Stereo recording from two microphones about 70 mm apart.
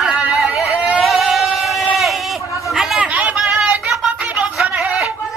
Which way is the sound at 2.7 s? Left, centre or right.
Centre.